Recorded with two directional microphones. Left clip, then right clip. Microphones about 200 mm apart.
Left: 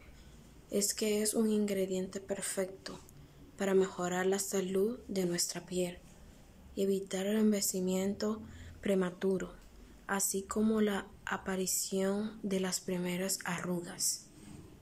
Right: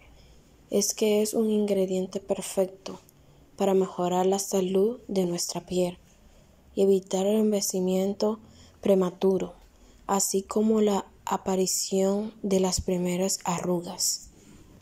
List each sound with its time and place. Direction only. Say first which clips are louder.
0.7 s a woman's voice: right 9 dB; 15° right (ahead or behind)